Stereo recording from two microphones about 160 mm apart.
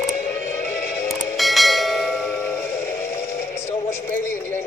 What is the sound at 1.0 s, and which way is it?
Bell, centre (ahead or behind).